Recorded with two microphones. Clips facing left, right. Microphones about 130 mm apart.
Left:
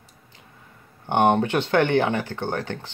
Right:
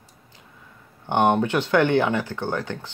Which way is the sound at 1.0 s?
15° left (ahead or behind).